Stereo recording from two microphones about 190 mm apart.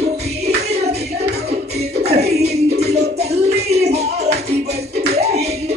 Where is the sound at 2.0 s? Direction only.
35° right (ahead or behind).